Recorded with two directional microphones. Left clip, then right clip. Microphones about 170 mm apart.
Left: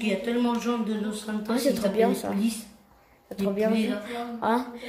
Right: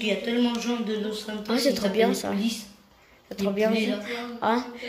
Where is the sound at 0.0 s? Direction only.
65° left (ahead or behind).